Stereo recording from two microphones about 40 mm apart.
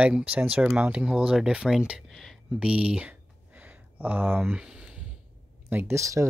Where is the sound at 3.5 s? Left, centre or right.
Right.